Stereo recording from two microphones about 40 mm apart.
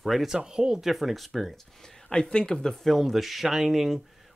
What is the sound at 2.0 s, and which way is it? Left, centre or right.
Speech, centre.